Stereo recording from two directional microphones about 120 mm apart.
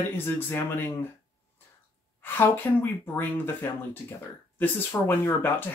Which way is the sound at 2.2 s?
20° left (ahead or behind).